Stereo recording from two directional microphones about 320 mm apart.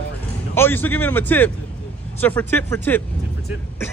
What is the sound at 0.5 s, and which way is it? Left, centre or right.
Speech, centre.